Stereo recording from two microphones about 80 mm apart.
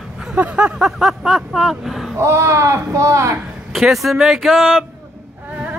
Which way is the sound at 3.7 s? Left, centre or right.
Centre.